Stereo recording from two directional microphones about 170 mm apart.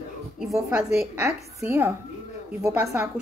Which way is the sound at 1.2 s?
15° right (ahead or behind).